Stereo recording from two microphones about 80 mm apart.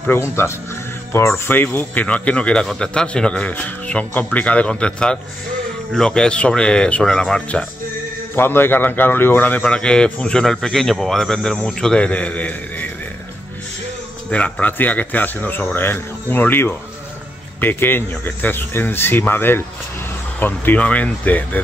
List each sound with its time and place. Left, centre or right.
0.1 s speech: left
1.3 s a man's voice: left
2.6 s a man's voice: centre
8.4 s a man's voice: left
14.3 s speech: centre